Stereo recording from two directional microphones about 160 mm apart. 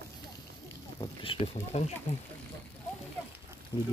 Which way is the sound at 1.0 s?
35° left (ahead or behind).